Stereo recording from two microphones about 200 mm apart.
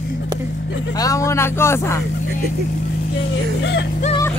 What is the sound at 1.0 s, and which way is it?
Speech, 15° left (ahead or behind).